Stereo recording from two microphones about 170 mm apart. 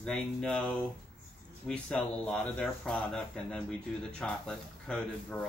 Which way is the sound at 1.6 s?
5° left (ahead or behind).